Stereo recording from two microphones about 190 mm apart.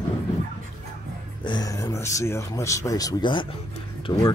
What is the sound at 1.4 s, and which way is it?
Speech, 20° left (ahead or behind).